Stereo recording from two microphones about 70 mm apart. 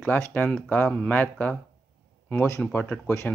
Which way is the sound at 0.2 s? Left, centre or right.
Left.